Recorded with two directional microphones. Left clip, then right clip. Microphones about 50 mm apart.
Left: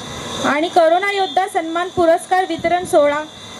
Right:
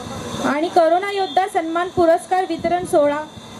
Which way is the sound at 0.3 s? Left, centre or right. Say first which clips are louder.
Left 2 dB; left.